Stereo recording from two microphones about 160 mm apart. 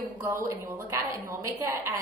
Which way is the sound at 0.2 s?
15° right (ahead or behind).